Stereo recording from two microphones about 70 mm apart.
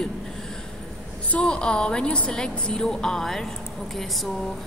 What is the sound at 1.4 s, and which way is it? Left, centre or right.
A woman's voice, centre.